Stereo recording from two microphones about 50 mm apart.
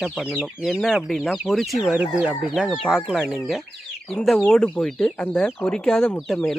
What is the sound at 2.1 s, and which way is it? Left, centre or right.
Speech, right.